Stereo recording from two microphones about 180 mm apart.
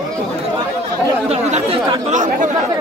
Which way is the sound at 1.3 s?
35° right (ahead or behind).